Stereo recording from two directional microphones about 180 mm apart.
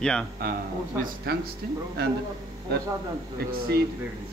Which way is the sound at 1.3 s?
60° right (ahead or behind).